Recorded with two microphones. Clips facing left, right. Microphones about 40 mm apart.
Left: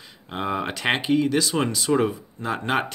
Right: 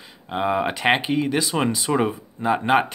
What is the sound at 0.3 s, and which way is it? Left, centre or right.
Speech, centre.